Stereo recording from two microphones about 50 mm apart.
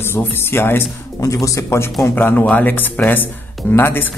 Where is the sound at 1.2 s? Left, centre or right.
Left.